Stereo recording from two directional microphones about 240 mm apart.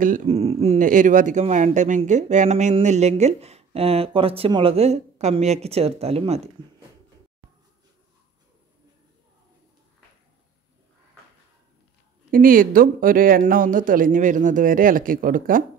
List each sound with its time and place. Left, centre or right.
0.0 s speech: right
12.3 s speech: right